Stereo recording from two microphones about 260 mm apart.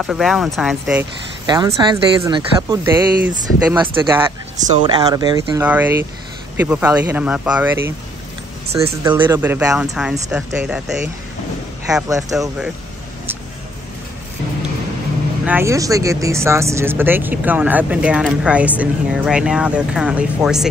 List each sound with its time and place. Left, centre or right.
0.0 s speech: centre
1.4 s speech: centre
12.1 s speech: centre
12.4 s speech: centre
15.4 s speech: centre